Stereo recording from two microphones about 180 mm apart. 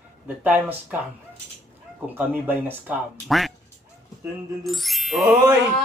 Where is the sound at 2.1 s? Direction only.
10° right (ahead or behind).